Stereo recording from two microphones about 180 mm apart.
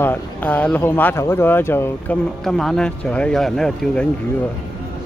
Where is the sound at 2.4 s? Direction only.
Centre (ahead or behind).